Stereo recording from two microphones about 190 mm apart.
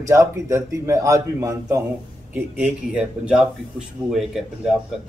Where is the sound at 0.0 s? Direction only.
15° right (ahead or behind).